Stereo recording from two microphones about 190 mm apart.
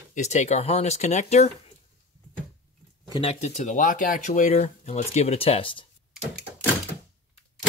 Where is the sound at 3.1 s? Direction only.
35° left (ahead or behind).